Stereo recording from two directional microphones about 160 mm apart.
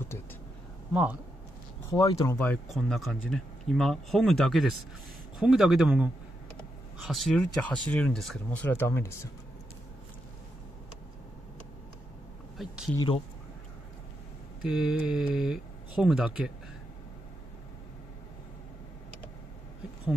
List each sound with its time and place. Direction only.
1.8 s speech: 20° left (ahead or behind)
2.3 s speech: 10° left (ahead or behind)
7.1 s speech: centre (ahead or behind)
8.5 s speech: 10° left (ahead or behind)
12.5 s speech: centre (ahead or behind)
14.6 s speech: 5° right (ahead or behind)